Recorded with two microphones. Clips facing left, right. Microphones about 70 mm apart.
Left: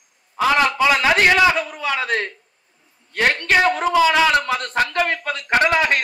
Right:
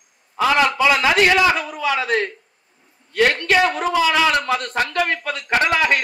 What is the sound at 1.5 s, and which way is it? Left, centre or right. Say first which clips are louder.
A man's voice: right 1 dB; left.